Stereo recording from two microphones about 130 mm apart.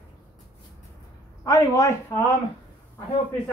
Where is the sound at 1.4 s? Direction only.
25° left (ahead or behind).